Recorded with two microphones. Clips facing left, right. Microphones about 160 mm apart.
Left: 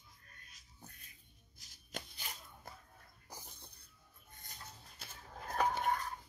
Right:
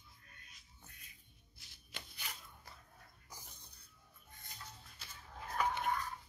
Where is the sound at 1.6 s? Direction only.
40° left (ahead or behind).